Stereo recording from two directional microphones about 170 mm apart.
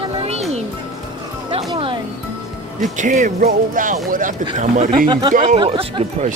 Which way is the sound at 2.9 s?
45° right (ahead or behind).